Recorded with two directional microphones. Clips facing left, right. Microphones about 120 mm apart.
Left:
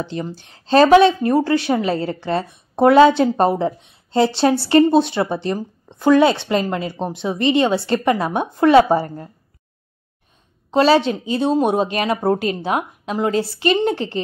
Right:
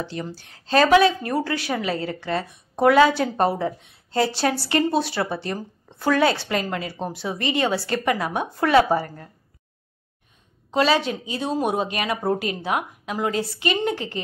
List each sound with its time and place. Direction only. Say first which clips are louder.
0.0 s a woman's voice: left 4 dB; 20° left (ahead or behind)
10.7 s a woman's voice: left 6 dB; 30° left (ahead or behind)